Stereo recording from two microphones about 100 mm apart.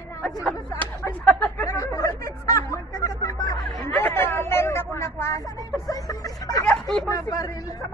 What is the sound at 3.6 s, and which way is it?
Speech, centre (ahead or behind).